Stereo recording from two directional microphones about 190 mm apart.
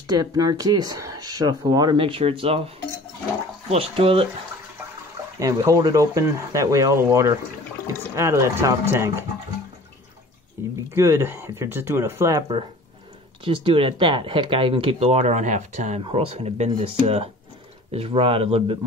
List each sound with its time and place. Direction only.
0.0 s speech: 20° right (ahead or behind)
3.7 s speech: 30° right (ahead or behind)
5.4 s speech: 15° right (ahead or behind)
11.0 s speech: 10° right (ahead or behind)
13.4 s speech: 30° right (ahead or behind)